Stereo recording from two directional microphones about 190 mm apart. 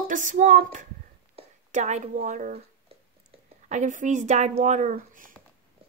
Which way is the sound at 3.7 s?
40° right (ahead or behind).